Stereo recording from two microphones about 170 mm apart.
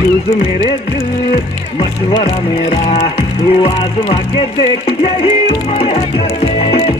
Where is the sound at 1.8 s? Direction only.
35° left (ahead or behind).